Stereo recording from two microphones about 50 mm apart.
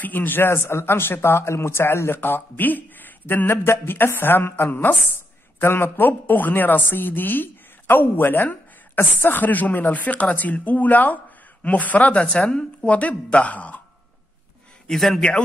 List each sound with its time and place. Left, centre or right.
0.0 s speech: left
0.5 s a woman's voice: left
14.9 s a man's voice: centre